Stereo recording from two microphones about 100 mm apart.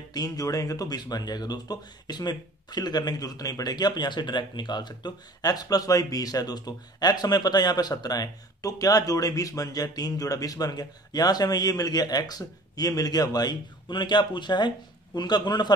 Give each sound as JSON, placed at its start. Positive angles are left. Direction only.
{"t": 0.1, "sound": "a man's voice", "side_deg": 40}